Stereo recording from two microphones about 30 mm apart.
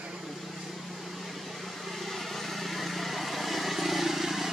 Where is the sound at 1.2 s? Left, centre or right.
Centre.